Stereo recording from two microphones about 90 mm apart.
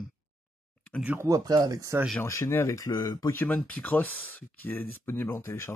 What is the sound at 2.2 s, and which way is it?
Speech, 30° left (ahead or behind).